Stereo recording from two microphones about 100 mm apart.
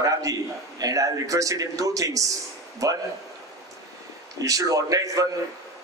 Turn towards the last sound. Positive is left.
turn(degrees=-35)  # may be behind; listen again after turning